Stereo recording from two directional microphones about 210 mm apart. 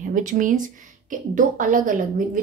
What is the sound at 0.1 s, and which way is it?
Speech, 40° right (ahead or behind).